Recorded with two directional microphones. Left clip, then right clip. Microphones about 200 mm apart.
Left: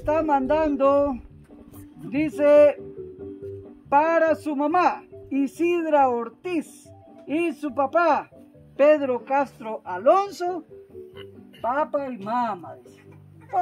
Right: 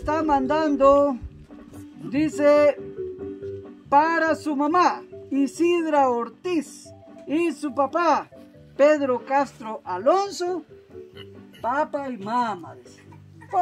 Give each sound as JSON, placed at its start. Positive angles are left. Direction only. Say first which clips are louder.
{"t": 0.0, "sound": "speech", "louder": "even", "side_deg": 20}
{"t": 2.0, "sound": "speech", "louder": "even", "side_deg": 15}
{"t": 3.9, "sound": "speech", "louder": "even", "side_deg": 15}
{"t": 11.6, "sound": "speech", "louder": "even", "side_deg": 10}